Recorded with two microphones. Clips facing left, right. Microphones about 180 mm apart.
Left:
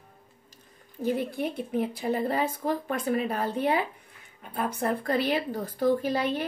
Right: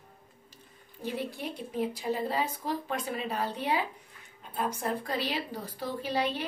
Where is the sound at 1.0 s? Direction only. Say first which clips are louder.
Left 7 dB; 50° left (ahead or behind).